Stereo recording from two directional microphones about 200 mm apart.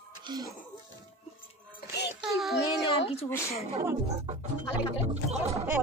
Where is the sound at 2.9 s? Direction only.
30° left (ahead or behind).